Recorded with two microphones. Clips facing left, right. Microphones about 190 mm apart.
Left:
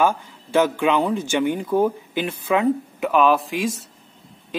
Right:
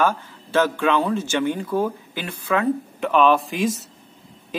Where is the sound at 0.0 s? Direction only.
15° left (ahead or behind).